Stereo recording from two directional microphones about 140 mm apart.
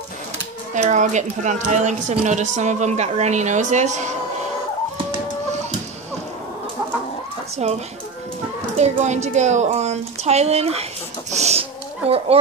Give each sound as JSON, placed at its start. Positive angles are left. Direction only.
{"t": 0.7, "sound": "a woman's voice", "side_deg": -60}
{"t": 7.6, "sound": "speech", "side_deg": -50}
{"t": 11.3, "sound": "chicken", "side_deg": -50}